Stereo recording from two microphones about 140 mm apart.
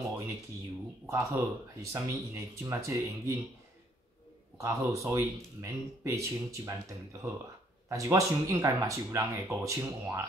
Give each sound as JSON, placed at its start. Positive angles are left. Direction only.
{"t": 1.0, "sound": "speech", "side_deg": -25}
{"t": 4.6, "sound": "speech", "side_deg": -25}